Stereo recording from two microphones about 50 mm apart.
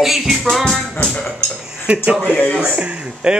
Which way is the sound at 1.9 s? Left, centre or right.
Right.